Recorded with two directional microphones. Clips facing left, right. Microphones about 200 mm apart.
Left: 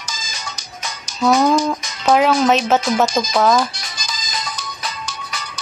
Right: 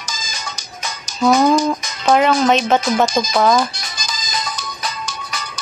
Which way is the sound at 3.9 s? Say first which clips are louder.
Right 2 dB; 45° right (ahead or behind).